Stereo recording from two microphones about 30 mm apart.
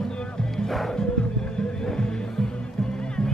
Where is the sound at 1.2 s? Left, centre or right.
Left.